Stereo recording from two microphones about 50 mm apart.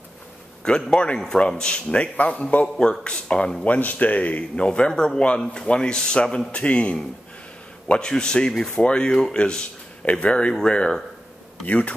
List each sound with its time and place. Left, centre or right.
0.7 s speech: centre
1.9 s speech: left
3.6 s speech: left
4.6 s speech: centre
11.6 s speech: left